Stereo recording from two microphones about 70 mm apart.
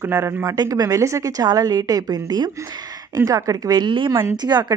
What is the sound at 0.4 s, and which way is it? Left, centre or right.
A woman's voice, right.